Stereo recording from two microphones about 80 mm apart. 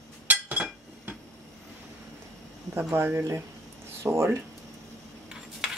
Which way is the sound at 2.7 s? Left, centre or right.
Right.